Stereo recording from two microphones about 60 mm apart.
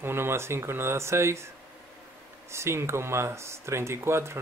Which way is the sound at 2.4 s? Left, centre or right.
Right.